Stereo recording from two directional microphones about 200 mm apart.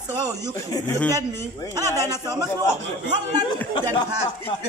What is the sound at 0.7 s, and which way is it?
Speech, 15° left (ahead or behind).